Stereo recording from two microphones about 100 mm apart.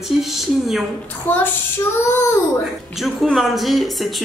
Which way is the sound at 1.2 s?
20° left (ahead or behind).